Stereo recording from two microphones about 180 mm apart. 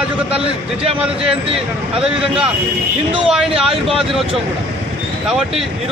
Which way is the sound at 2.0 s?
5° right (ahead or behind).